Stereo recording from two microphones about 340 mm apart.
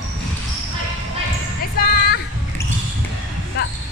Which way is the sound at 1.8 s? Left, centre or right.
Left.